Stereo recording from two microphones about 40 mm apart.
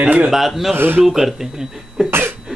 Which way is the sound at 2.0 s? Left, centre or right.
Right.